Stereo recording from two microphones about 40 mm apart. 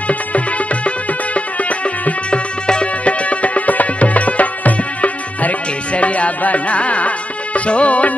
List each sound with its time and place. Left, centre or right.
0.1 s music: left
2.6 s music: left